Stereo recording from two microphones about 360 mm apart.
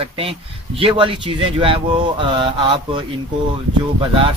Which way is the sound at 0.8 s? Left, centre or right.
Centre.